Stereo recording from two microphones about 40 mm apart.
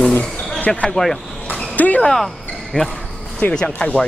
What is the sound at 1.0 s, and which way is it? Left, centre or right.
Speech, centre.